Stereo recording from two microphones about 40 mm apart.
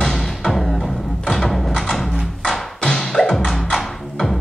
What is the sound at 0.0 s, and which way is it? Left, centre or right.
Music, centre.